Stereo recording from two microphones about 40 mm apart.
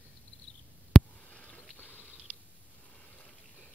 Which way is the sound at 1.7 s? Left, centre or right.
Left.